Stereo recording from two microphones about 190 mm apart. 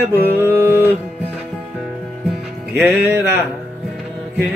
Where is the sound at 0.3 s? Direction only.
10° right (ahead or behind).